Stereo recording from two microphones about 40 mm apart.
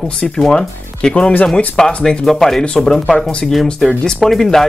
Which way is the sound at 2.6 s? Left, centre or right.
Centre.